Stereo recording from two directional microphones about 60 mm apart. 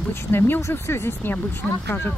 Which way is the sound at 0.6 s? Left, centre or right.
Left.